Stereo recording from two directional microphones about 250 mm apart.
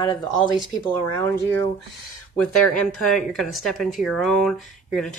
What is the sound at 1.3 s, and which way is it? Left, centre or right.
Speech, centre.